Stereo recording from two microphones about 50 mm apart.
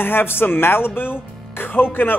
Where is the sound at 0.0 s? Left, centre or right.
Left.